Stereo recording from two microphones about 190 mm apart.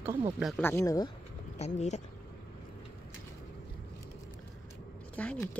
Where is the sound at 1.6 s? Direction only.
35° left (ahead or behind).